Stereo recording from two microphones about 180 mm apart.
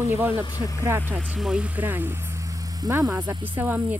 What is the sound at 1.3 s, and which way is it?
Speech, 5° right (ahead or behind).